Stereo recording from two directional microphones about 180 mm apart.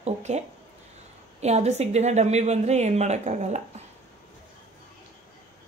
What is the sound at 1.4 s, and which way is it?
A woman's voice, 35° right (ahead or behind).